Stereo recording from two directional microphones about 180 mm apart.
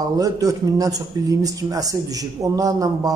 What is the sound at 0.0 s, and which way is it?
A man's voice, 20° right (ahead or behind).